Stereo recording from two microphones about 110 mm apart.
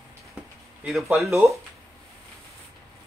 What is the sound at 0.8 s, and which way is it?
Speech, centre (ahead or behind).